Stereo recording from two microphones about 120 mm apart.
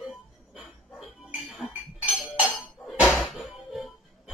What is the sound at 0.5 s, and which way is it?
Dog, 5° right (ahead or behind).